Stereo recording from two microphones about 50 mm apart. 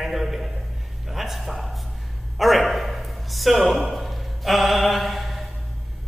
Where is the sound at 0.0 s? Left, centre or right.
Centre.